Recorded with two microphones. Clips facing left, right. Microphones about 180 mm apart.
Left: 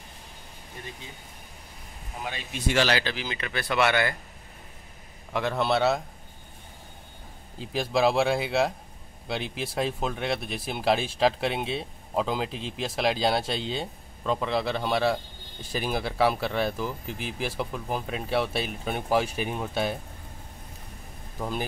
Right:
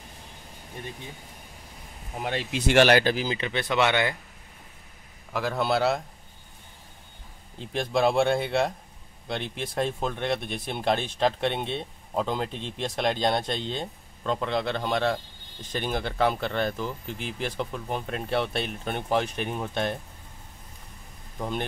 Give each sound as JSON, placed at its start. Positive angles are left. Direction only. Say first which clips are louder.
{"t": 2.1, "sound": "speech", "louder": "right 6 dB", "side_deg": -65}
{"t": 3.3, "sound": "speech", "louder": "right 3 dB", "side_deg": -25}
{"t": 5.3, "sound": "speech", "louder": "even", "side_deg": 0}
{"t": 7.5, "sound": "speech", "louder": "even", "side_deg": 5}
{"t": 21.4, "sound": "speech", "louder": "even", "side_deg": 5}